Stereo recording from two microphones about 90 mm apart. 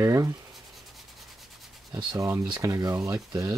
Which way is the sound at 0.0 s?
35° right (ahead or behind).